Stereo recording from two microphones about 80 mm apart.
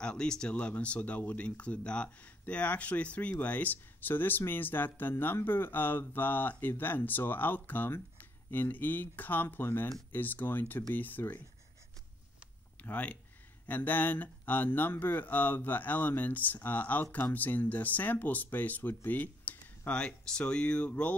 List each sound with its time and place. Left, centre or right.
0.0 s speech: centre
12.8 s speech: centre